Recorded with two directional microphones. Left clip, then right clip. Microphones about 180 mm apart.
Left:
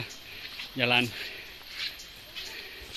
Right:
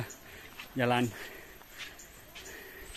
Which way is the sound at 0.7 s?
25° right (ahead or behind).